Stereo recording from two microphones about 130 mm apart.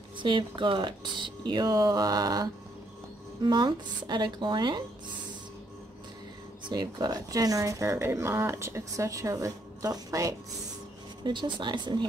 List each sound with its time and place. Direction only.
0.2 s speech: 40° right (ahead or behind)
6.7 s speech: 35° right (ahead or behind)